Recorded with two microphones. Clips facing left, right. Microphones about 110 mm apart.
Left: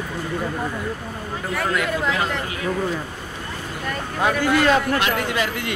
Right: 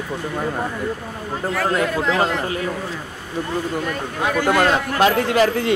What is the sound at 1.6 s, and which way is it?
Speech, 35° right (ahead or behind).